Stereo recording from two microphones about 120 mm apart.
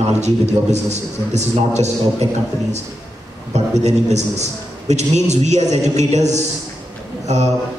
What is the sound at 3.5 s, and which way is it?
A man's voice, 70° right (ahead or behind).